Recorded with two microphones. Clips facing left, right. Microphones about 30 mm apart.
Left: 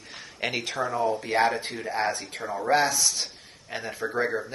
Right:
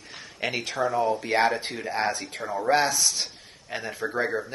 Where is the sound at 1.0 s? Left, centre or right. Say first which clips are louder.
Left 2 dB; right.